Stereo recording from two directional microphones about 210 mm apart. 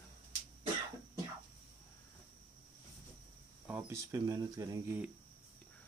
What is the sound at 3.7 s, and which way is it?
Speech, 10° right (ahead or behind).